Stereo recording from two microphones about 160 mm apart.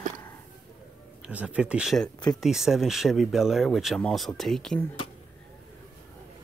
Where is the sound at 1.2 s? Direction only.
5° right (ahead or behind).